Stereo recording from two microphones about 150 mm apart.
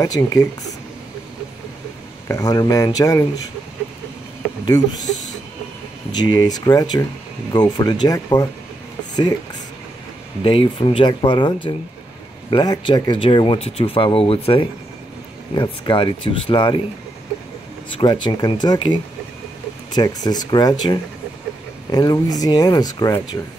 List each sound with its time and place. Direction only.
0.0 s speech: 25° left (ahead or behind)
2.2 s speech: 20° left (ahead or behind)
4.6 s speech: 25° left (ahead or behind)
6.1 s speech: 30° left (ahead or behind)
10.4 s speech: 35° left (ahead or behind)
17.9 s speech: 30° left (ahead or behind)